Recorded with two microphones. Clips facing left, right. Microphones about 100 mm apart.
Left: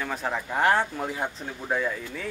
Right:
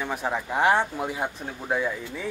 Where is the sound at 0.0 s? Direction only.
15° right (ahead or behind).